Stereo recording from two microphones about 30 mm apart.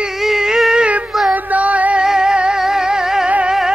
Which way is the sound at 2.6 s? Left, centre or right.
Centre.